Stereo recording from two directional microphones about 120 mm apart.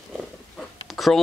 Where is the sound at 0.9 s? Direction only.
Centre (ahead or behind).